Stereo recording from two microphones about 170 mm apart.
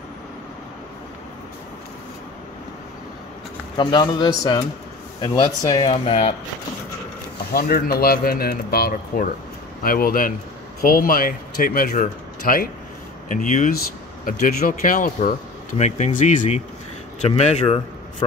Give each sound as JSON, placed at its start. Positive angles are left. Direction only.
{"t": 3.7, "sound": "speech", "side_deg": 25}
{"t": 7.5, "sound": "speech", "side_deg": 60}